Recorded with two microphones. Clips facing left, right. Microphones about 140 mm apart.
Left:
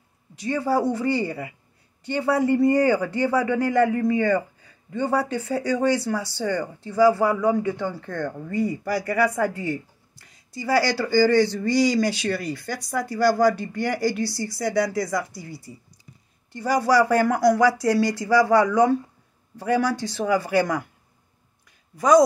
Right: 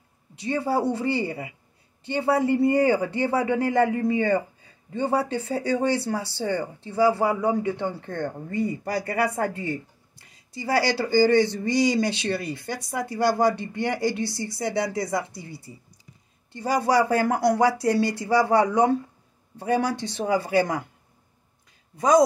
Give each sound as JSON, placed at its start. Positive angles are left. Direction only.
{"t": 0.4, "sound": "speech", "side_deg": -25}
{"t": 21.9, "sound": "a woman's voice", "side_deg": -25}